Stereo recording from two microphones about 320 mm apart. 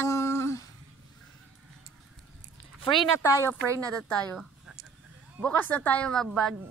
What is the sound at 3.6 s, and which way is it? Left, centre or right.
Speech, centre.